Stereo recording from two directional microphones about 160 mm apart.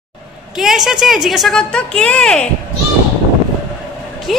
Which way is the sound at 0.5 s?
Centre (ahead or behind).